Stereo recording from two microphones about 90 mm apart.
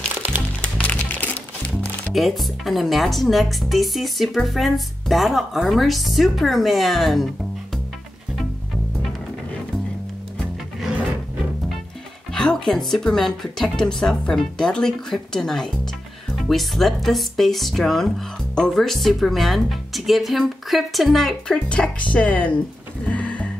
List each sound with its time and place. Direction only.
0.1 s music: 20° right (ahead or behind)
0.6 s music: 15° left (ahead or behind)
2.1 s speech: centre (ahead or behind)
12.3 s speech: 5° left (ahead or behind)
23.0 s music: 15° left (ahead or behind)